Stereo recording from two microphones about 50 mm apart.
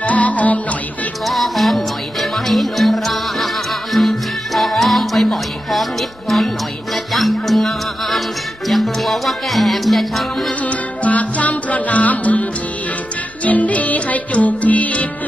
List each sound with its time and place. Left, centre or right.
0.0 s music: left
1.2 s music: centre
10.6 s music: left